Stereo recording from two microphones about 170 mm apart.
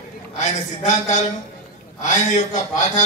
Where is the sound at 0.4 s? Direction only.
45° left (ahead or behind).